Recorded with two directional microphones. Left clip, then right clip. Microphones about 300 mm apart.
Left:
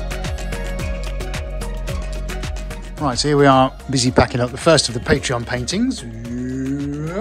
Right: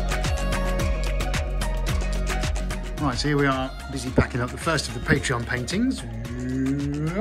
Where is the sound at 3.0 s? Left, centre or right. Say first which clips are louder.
Left 9 dB; centre.